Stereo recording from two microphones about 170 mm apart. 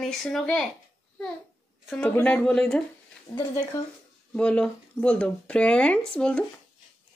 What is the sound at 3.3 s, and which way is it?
Speech, 20° left (ahead or behind).